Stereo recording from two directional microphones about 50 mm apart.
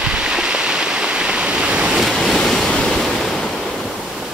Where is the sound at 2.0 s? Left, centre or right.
Centre.